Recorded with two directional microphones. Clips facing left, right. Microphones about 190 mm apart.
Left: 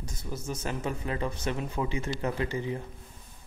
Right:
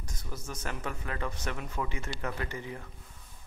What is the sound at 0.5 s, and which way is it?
A man's voice, 25° left (ahead or behind).